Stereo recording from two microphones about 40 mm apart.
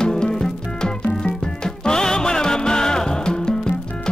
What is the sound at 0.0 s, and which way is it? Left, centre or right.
Music, centre.